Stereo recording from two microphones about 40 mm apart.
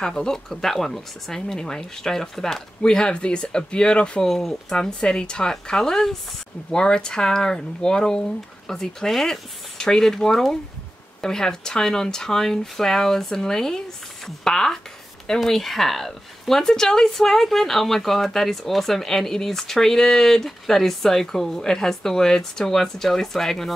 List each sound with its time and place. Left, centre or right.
0.0 s speech: centre
4.3 s speech: centre
4.7 s speech: centre